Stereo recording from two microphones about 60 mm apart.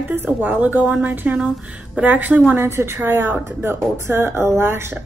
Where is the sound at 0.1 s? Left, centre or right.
Right.